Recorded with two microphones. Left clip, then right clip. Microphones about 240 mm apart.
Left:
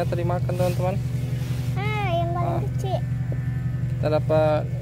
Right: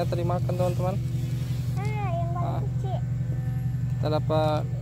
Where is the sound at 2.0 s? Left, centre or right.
Left.